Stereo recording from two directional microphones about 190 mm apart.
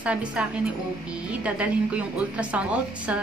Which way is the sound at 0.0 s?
5° right (ahead or behind).